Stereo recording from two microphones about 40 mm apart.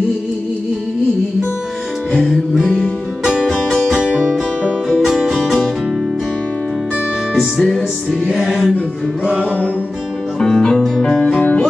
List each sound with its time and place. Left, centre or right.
2.2 s music: centre
7.3 s music: centre
10.4 s music: centre